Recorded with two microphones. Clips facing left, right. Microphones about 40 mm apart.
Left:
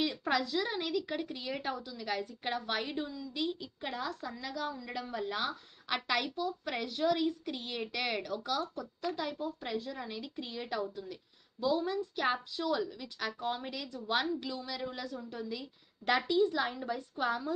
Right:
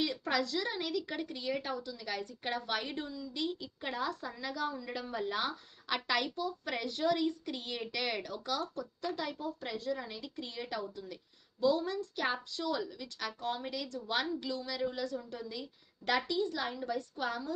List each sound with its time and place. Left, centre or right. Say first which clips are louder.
0.0 s a woman's voice: left 1 dB; centre